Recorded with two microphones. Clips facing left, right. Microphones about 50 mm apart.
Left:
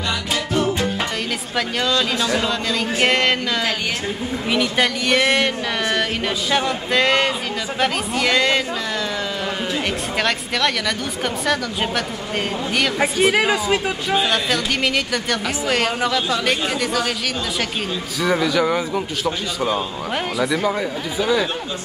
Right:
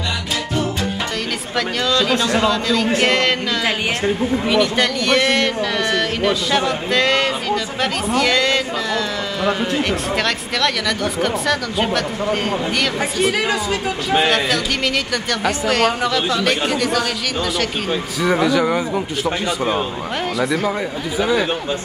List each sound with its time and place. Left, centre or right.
3.0 s speech: centre
4.5 s speech: centre
10.1 s speech: centre
12.7 s a woman's voice: centre
13.3 s a woman's voice: centre
15.7 s speech: centre
18.2 s a man's voice: centre
20.4 s speech: centre
21.2 s a man's voice: centre